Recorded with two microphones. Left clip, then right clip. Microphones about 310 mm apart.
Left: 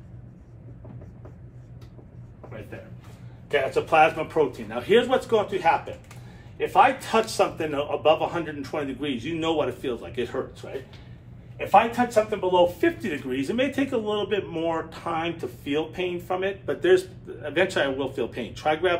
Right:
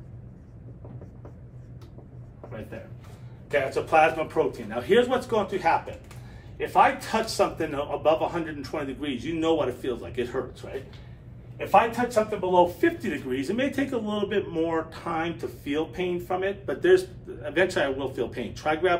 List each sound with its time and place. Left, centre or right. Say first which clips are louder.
3.4 s speech: left 2 dB; centre